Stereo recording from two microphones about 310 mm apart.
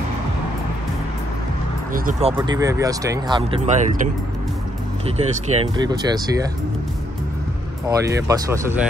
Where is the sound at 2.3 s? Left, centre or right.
Centre.